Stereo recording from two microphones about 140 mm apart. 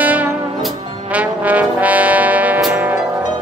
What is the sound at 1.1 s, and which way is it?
Trombone, 10° right (ahead or behind).